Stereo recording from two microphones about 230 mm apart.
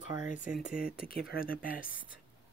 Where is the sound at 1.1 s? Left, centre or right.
Left.